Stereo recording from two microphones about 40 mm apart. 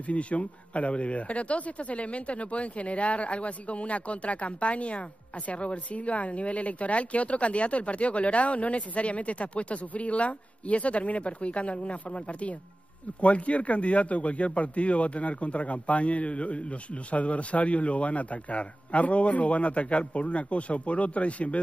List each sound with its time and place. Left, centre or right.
0.1 s speech: left